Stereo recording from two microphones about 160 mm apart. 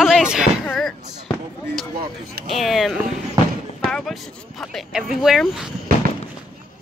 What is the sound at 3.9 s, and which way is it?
Speech, centre (ahead or behind).